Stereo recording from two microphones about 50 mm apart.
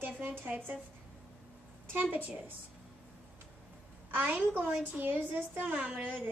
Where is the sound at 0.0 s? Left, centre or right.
Right.